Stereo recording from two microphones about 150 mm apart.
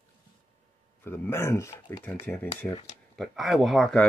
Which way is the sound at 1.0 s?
15° left (ahead or behind).